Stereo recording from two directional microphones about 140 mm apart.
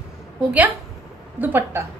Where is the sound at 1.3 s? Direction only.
15° right (ahead or behind).